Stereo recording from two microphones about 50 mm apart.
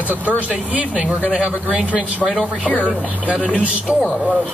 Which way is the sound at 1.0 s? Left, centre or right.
Right.